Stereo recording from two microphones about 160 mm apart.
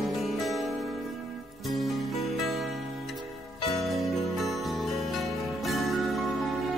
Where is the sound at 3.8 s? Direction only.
Centre (ahead or behind).